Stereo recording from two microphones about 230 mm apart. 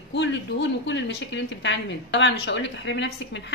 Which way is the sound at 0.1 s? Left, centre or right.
Left.